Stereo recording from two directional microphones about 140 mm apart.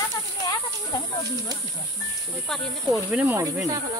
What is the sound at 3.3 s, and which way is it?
Speech, 25° right (ahead or behind).